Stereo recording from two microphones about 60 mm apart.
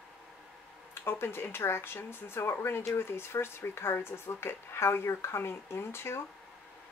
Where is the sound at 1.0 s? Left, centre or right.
Left.